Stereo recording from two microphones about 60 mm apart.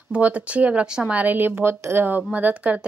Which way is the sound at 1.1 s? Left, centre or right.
Right.